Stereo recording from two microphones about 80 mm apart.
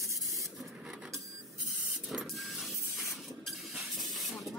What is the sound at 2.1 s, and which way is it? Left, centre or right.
Vehicle, centre.